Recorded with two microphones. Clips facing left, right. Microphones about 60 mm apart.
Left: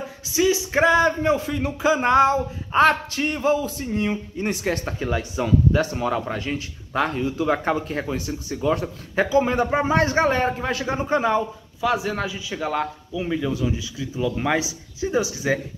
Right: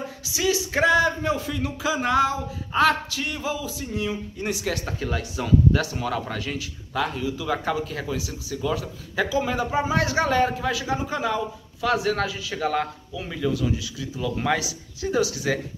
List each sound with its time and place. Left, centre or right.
0.4 s speech: left
5.0 s speech: left
11.8 s a man's voice: centre
13.5 s speech: left